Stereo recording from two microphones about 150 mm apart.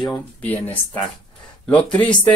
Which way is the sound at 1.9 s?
5° left (ahead or behind).